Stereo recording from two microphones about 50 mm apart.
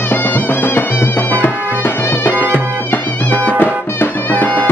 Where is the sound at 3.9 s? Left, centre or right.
Left.